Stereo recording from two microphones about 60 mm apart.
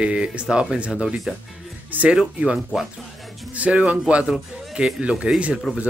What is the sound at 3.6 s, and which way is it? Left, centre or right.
Speech, right.